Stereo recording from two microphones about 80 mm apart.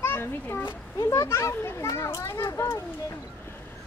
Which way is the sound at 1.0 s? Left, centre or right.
Left.